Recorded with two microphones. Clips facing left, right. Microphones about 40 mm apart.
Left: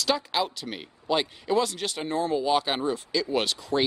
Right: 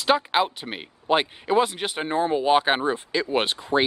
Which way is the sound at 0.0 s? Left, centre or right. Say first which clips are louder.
Right 5 dB; right.